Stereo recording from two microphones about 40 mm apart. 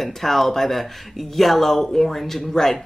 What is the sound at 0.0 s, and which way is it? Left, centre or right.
Speech, centre.